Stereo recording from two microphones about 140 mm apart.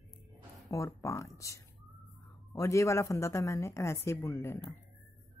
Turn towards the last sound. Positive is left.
turn(degrees=20)  # may be behind; listen again after turning